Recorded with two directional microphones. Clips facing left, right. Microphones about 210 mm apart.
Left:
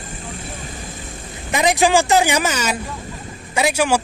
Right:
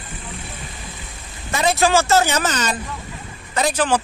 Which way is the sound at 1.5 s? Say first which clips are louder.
Left 2 dB; 15° left (ahead or behind).